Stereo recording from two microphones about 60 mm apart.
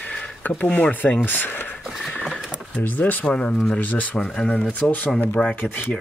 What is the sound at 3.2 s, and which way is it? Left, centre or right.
Speech, centre.